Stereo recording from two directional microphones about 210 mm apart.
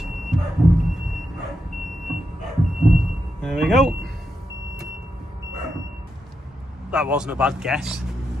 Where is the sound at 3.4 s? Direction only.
Centre (ahead or behind).